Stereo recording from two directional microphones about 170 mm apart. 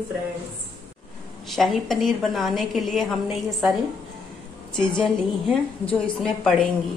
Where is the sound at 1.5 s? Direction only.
Centre (ahead or behind).